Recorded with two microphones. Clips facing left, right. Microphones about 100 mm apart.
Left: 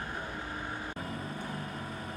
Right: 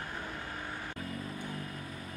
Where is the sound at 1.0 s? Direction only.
30° left (ahead or behind).